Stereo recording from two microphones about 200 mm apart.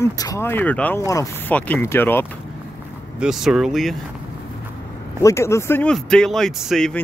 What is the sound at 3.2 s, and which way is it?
Speech, centre (ahead or behind).